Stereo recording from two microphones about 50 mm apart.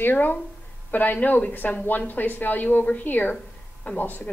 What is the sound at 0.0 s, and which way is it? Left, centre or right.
Speech, left.